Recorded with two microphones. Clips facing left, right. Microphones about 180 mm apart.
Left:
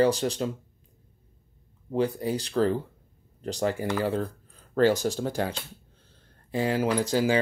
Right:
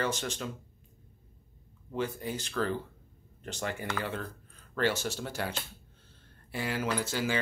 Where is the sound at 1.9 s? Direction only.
35° left (ahead or behind).